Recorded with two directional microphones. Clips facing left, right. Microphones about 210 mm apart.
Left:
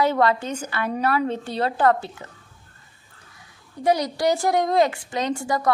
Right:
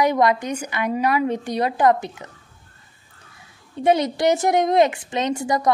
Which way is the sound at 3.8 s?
25° right (ahead or behind).